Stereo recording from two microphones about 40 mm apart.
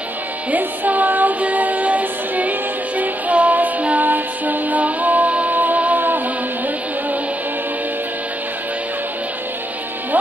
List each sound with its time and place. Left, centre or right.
0.5 s music: right